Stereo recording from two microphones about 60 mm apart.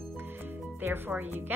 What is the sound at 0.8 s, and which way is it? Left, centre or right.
Speech, right.